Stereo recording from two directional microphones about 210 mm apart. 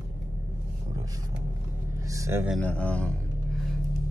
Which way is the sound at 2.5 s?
5° left (ahead or behind).